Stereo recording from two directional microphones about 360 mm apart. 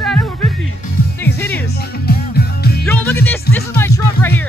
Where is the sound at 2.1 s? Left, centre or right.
Left.